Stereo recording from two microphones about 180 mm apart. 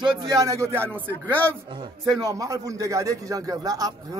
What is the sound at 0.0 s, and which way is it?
A man's voice, 25° right (ahead or behind).